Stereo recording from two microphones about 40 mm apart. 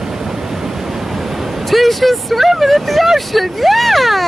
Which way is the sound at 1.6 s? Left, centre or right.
Centre.